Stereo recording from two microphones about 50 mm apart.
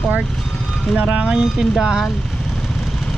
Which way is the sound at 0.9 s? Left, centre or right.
Right.